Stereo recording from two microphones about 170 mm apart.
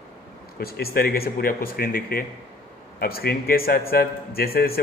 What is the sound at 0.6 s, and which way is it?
A man's voice, 65° left (ahead or behind).